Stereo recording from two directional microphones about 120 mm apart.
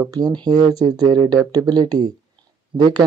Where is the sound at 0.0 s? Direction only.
35° right (ahead or behind).